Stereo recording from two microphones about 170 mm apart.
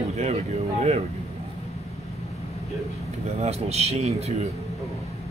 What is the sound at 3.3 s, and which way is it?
Speech, 35° right (ahead or behind).